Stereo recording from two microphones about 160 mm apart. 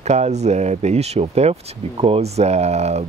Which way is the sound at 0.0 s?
45° right (ahead or behind).